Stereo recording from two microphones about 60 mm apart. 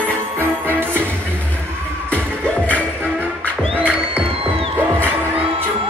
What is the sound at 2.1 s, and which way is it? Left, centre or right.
Music, left.